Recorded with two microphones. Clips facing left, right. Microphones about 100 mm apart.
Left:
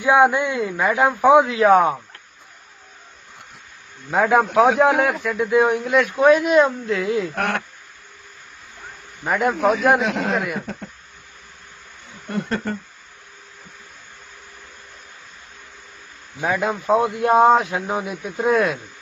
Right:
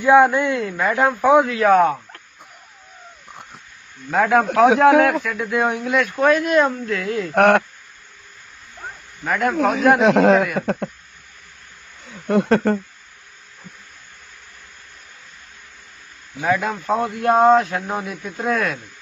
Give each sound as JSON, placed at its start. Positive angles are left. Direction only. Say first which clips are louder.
{"t": 0.0, "sound": "a man's voice", "louder": "right 2 dB", "side_deg": 10}
{"t": 4.1, "sound": "a man's voice", "louder": "even", "side_deg": 5}
{"t": 7.3, "sound": "speech", "louder": "right 10 dB", "side_deg": -75}
{"t": 9.2, "sound": "a man's voice", "louder": "even", "side_deg": 20}
{"t": 9.9, "sound": "speech", "louder": "right 8 dB", "side_deg": -90}
{"t": 12.3, "sound": "speech", "louder": "right 9 dB", "side_deg": -85}
{"t": 16.3, "sound": "a man's voice", "louder": "right 1 dB", "side_deg": 5}